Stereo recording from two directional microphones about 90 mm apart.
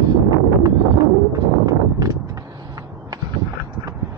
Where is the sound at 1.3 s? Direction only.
40° right (ahead or behind).